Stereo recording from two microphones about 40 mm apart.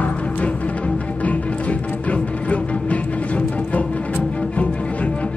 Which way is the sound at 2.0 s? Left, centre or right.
Left.